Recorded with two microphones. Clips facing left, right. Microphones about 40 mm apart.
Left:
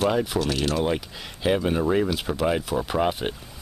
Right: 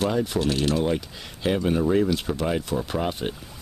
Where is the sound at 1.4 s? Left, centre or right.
Centre.